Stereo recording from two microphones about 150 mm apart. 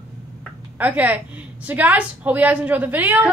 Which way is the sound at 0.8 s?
10° right (ahead or behind).